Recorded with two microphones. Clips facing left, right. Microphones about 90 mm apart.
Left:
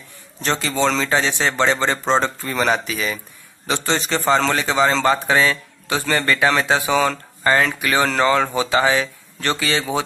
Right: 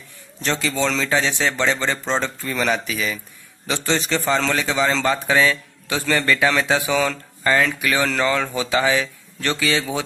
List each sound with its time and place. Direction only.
0.7 s a man's voice: 25° left (ahead or behind)
3.9 s speech: 25° left (ahead or behind)